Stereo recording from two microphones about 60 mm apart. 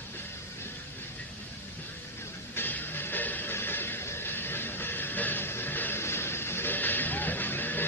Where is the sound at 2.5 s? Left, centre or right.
Left.